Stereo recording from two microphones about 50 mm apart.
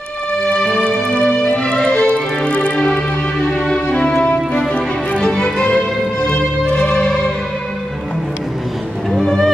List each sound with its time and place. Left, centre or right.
0.5 s music: centre
3.4 s music: centre
9.1 s music: centre